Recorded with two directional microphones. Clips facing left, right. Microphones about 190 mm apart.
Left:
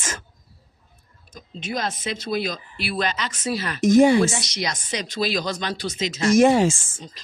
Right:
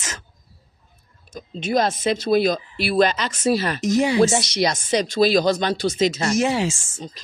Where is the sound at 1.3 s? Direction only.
30° right (ahead or behind).